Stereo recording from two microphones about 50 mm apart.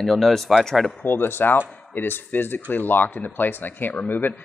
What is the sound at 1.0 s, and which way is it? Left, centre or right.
Speech, left.